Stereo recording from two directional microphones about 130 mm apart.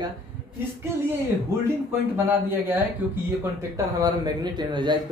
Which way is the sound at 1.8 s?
15° right (ahead or behind).